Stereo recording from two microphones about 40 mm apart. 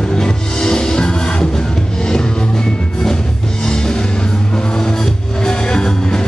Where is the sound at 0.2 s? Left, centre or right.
Centre.